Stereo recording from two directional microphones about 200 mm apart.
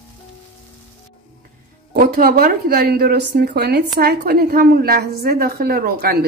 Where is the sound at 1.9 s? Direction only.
50° right (ahead or behind).